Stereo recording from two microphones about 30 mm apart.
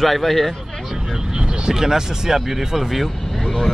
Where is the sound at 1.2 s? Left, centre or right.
Right.